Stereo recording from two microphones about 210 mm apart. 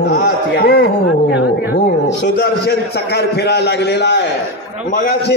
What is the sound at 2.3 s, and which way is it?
A man's voice, 50° left (ahead or behind).